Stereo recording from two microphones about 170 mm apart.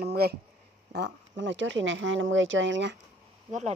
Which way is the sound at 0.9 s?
90° right.